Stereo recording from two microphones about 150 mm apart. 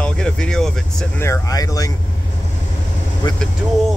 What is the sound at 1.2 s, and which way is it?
Speech, 20° left (ahead or behind).